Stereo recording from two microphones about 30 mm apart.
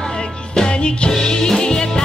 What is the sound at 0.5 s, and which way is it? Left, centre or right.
Music, left.